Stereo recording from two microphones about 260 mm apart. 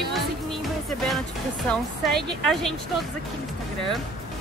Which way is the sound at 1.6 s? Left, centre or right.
Centre.